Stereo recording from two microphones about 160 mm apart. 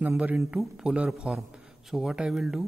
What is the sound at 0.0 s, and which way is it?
A man's voice, 10° right (ahead or behind).